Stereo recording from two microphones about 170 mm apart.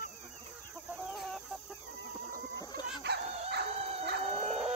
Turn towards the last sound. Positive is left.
turn(degrees=0)  # may be behind; listen again after turning